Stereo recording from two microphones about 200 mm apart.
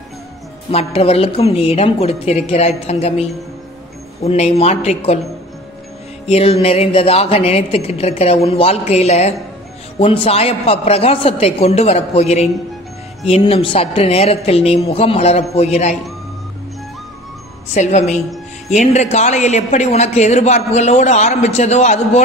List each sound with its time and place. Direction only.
0.7 s a woman's voice: 30° left (ahead or behind)
6.2 s a woman's voice: 30° left (ahead or behind)
17.7 s a woman's voice: 35° left (ahead or behind)